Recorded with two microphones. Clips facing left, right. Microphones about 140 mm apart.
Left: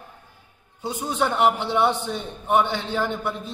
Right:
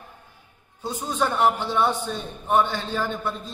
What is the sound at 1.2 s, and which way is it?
A man's voice, 20° left (ahead or behind).